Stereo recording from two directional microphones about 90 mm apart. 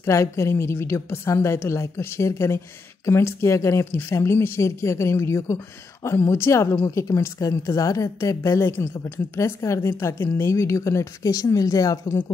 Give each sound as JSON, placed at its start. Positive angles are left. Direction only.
{"t": 0.0, "sound": "a woman's voice", "side_deg": 35}